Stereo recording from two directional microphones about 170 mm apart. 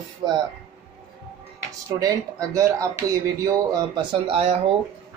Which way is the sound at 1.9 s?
20° right (ahead or behind).